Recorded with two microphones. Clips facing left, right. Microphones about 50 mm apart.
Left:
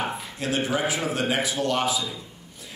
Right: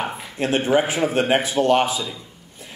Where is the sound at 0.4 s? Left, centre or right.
Right.